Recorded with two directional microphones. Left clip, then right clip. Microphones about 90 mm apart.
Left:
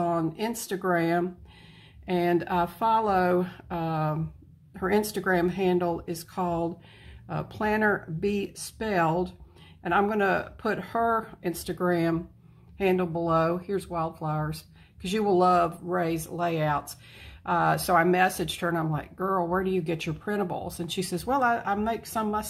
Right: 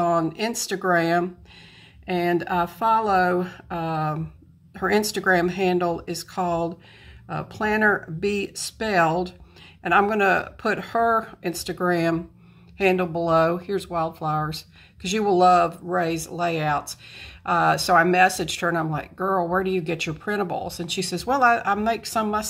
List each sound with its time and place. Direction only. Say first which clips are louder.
0.0 s speech: right 6 dB; 20° right (ahead or behind)
2.0 s speech: right 3 dB; 5° right (ahead or behind)
4.7 s speech: right 4 dB; 15° right (ahead or behind)
7.2 s speech: right 3 dB; 5° right (ahead or behind)